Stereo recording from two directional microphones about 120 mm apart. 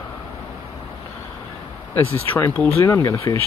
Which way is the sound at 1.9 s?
20° left (ahead or behind).